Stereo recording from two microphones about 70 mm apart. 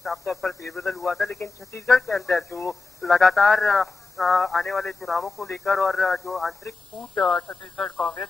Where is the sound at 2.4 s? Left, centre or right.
Left.